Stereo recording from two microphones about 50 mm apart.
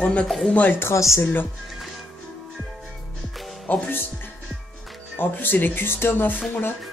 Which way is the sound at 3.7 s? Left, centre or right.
Left.